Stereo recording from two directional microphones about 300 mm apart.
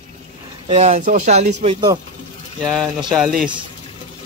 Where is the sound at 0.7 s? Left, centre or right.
Right.